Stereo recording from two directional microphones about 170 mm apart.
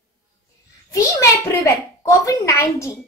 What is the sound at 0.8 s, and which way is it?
A child's voice, 20° left (ahead or behind).